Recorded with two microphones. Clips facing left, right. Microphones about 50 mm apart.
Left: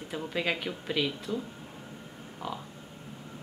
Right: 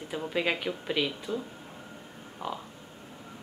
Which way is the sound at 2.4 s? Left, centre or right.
Right.